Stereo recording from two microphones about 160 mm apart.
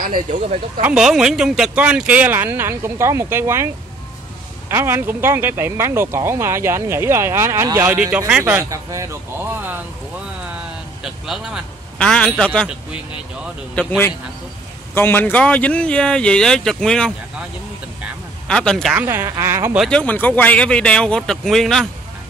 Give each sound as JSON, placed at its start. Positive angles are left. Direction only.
{"t": 0.0, "sound": "speech", "side_deg": -55}
{"t": 0.8, "sound": "speech", "side_deg": -5}
{"t": 4.6, "sound": "speech", "side_deg": -15}
{"t": 11.0, "sound": "a man's voice", "side_deg": -5}
{"t": 13.7, "sound": "speech", "side_deg": 10}
{"t": 18.5, "sound": "speech", "side_deg": 5}
{"t": 18.9, "sound": "speech", "side_deg": -15}
{"t": 19.8, "sound": "speech", "side_deg": 5}